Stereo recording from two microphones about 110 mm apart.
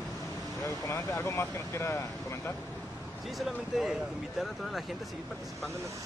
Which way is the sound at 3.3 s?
Centre (ahead or behind).